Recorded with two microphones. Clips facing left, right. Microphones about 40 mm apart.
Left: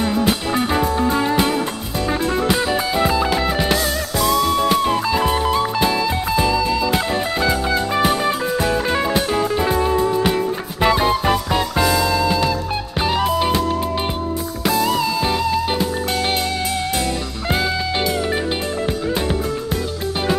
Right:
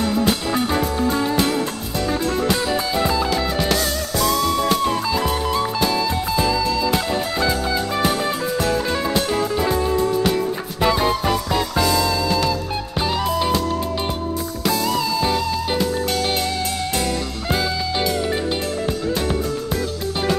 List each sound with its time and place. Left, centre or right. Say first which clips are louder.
0.0 s music: left 1 dB; centre
14.7 s music: left 3 dB; left
17.5 s music: left 2 dB; centre